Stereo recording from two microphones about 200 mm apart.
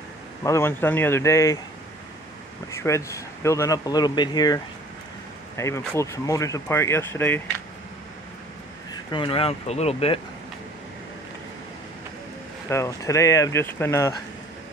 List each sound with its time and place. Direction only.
0.4 s speech: 15° left (ahead or behind)
2.7 s speech: 15° left (ahead or behind)
5.6 s speech: 15° left (ahead or behind)
9.1 s speech: 25° left (ahead or behind)
12.6 s speech: 15° left (ahead or behind)